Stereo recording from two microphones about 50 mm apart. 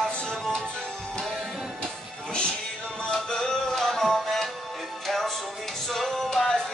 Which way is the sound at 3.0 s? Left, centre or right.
Centre.